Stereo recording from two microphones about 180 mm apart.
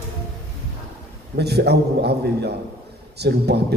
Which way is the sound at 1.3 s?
65° right (ahead or behind).